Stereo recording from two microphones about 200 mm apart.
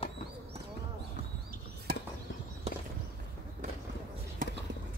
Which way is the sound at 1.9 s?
50° right (ahead or behind).